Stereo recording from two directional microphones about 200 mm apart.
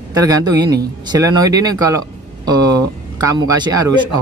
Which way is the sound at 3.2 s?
15° right (ahead or behind).